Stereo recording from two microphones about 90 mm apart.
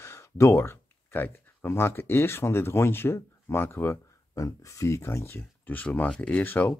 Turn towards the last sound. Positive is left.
turn(degrees=20)  # may be behind; listen again after turning